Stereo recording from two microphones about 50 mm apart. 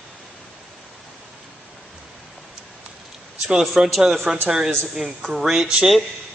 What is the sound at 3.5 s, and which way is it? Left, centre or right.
Speech, centre.